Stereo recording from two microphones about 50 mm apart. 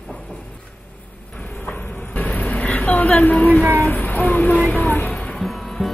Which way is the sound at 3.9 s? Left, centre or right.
Left.